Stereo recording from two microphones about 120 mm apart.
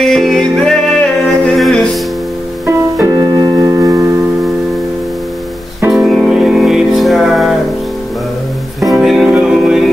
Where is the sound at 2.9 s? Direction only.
25° right (ahead or behind).